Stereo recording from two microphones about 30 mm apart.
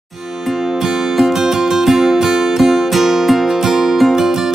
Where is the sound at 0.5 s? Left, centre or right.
Centre.